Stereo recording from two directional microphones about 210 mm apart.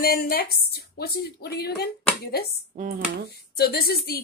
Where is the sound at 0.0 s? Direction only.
45° left (ahead or behind).